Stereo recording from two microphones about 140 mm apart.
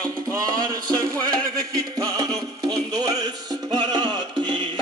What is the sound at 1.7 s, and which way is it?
Music, 25° right (ahead or behind).